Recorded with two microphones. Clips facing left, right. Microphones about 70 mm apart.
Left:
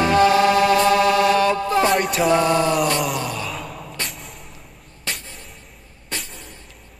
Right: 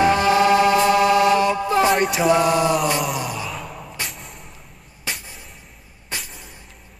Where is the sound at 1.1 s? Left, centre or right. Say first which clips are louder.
Even; centre.